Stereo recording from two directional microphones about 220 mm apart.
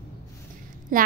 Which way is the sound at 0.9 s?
35° right (ahead or behind).